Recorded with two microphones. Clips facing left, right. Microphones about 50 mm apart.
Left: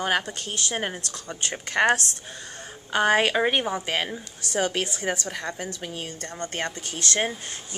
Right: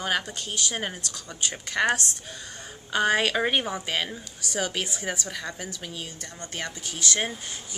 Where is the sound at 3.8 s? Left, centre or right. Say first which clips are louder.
Left 2 dB; left.